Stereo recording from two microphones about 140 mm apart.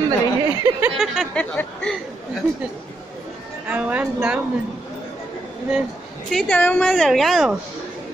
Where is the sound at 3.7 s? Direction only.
10° right (ahead or behind).